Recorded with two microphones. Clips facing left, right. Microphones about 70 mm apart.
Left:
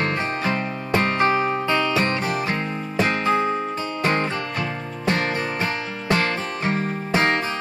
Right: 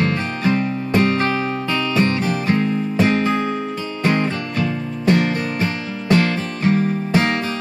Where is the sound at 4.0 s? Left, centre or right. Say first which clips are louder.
Right 4 dB; left.